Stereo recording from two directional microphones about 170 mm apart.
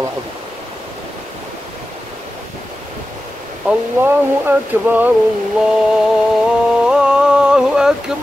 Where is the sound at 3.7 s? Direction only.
10° right (ahead or behind).